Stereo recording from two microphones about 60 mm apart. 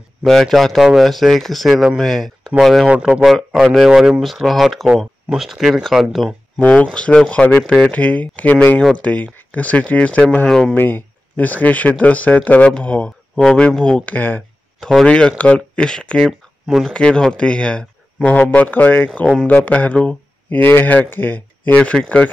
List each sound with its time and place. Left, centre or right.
0.2 s speech: centre
2.9 s speech: centre
3.6 s speech: centre
6.7 s speech: centre
10.7 s speech: left
14.8 s speech: centre
15.0 s speech: centre
16.2 s speech: centre
16.9 s speech: centre
20.4 s speech: left
21.7 s speech: centre